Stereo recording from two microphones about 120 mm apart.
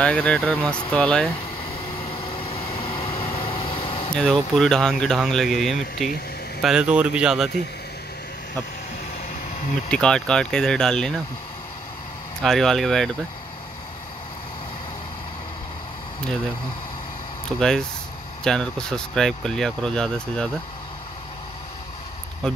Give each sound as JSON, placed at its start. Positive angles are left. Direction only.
{"t": 0.0, "sound": "speech", "side_deg": 10}
{"t": 2.0, "sound": "vehicle", "side_deg": 45}
{"t": 4.1, "sound": "speech", "side_deg": 5}
{"t": 9.8, "sound": "speech", "side_deg": 5}
{"t": 12.4, "sound": "speech", "side_deg": 5}
{"t": 17.5, "sound": "speech", "side_deg": 5}